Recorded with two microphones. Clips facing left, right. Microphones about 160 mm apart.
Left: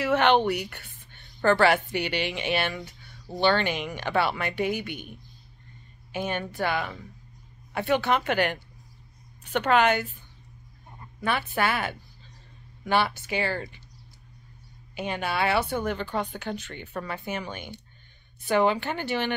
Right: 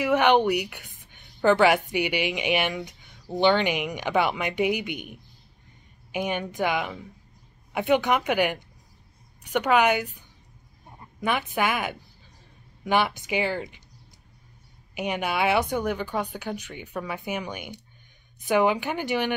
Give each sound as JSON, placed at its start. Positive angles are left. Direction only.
{"t": 0.0, "sound": "speech", "side_deg": -15}
{"t": 15.0, "sound": "speech", "side_deg": -15}